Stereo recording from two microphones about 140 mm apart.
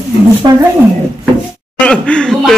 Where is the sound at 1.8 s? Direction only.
5° left (ahead or behind).